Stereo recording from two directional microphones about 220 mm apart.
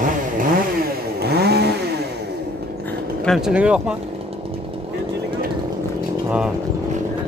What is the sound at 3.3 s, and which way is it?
Speech, centre (ahead or behind).